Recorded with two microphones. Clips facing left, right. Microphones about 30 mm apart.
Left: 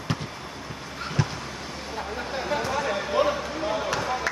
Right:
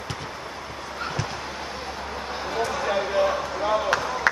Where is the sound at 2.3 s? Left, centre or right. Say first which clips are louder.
Even; centre.